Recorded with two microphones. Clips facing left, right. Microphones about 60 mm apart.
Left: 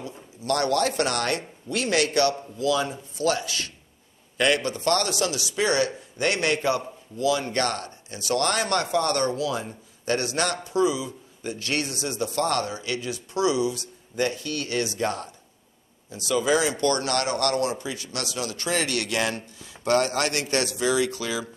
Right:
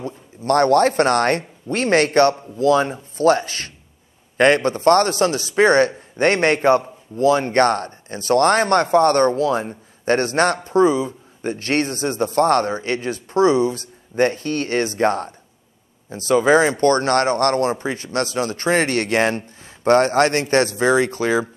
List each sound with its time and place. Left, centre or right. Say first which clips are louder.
0.0 s speech: right 7 dB; right